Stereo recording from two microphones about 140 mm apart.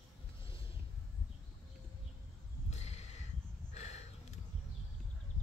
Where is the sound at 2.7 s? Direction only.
50° left (ahead or behind).